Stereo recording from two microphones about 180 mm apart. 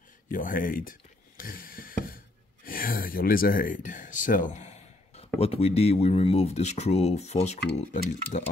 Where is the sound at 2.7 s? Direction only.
50° left (ahead or behind).